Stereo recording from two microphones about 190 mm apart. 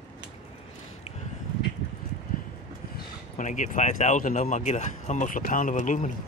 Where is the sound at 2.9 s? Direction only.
40° left (ahead or behind).